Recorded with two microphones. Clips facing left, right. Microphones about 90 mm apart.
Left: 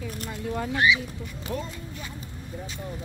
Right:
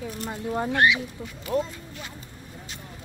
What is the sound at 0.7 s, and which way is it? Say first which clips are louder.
Speech: right 1 dB; 65° right (ahead or behind).